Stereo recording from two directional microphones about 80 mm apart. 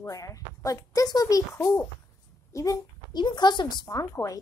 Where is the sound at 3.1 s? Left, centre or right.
Left.